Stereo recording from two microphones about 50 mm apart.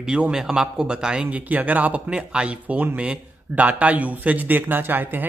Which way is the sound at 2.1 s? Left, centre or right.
Right.